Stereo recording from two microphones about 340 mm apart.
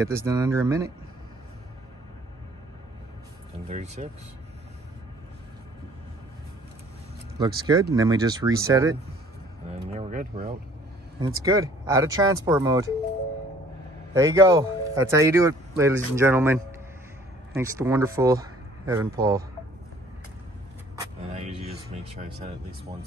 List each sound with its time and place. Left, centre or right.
0.0 s speech: centre
3.6 s speech: centre
7.3 s speech: centre
9.9 s speech: right
11.1 s speech: centre
14.1 s speech: centre
17.6 s speech: centre
21.0 s vehicle: centre